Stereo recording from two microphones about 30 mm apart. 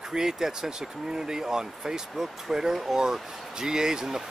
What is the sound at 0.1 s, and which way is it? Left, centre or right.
Speech, centre.